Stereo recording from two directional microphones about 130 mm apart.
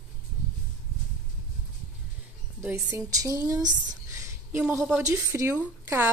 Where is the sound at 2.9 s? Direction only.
25° right (ahead or behind).